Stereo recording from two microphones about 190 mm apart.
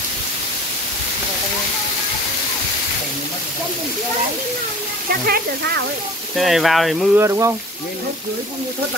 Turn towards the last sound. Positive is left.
turn(degrees=-15)  # may be behind; listen again after turning